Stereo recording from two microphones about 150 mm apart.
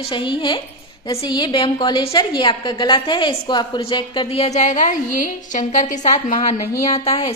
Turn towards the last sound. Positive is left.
turn(degrees=40)  # may be behind; listen again after turning